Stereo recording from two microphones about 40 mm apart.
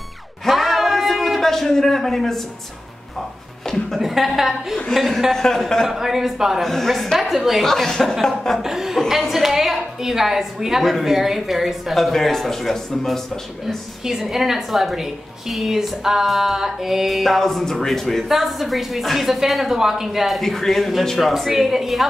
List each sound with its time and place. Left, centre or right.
0.5 s a sound: centre
3.9 s a sound: centre
4.4 s a man's voice: centre
6.6 s a woman's voice: centre
7.6 s speech: centre
8.6 s a woman's voice: centre
10.8 s a woman's voice: centre
14.0 s a woman's voice: centre